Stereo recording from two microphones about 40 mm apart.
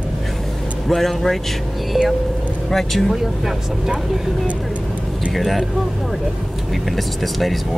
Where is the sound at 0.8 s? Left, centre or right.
Centre.